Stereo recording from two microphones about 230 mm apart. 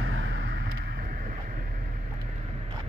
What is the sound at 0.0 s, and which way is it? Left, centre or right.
Vehicle, right.